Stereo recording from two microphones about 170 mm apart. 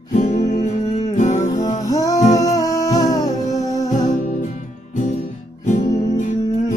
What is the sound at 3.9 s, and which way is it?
Music, 45° left (ahead or behind).